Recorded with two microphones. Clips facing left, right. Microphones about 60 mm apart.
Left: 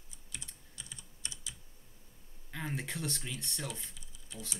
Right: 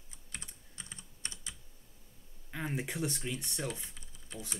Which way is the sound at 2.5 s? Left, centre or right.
Centre.